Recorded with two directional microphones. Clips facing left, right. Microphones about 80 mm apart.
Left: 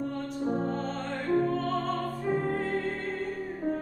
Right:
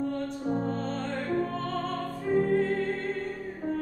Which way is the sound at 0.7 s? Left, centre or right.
Centre.